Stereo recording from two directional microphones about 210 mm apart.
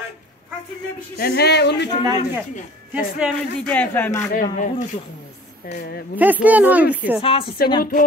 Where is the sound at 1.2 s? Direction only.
50° left (ahead or behind).